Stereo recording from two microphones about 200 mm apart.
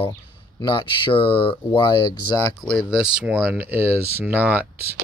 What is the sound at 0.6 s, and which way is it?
Speech, 20° left (ahead or behind).